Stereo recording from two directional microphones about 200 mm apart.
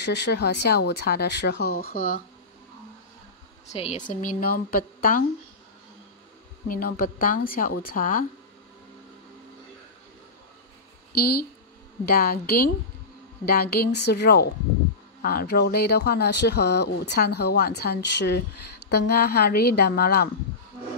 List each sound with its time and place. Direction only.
0.0 s speech: 60° left (ahead or behind)
3.7 s speech: 35° left (ahead or behind)
6.7 s a woman's voice: 45° left (ahead or behind)
12.1 s a woman's voice: 50° left (ahead or behind)